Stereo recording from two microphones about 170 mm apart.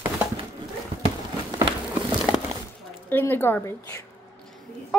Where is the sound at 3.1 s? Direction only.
10° left (ahead or behind).